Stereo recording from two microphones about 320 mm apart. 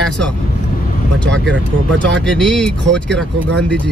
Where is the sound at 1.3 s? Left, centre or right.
Right.